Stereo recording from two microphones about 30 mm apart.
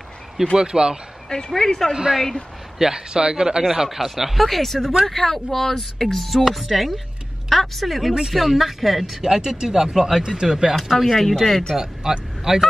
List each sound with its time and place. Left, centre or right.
0.6 s speech: right
1.3 s speech: centre
3.1 s speech: right
3.6 s speech: centre
4.5 s speech: centre
9.2 s speech: right
10.9 s speech: centre
11.7 s speech: right